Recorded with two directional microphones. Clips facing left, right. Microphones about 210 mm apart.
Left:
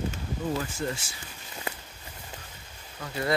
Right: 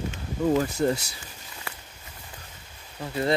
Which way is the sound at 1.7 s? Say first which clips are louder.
Left 5 dB; 20° left (ahead or behind).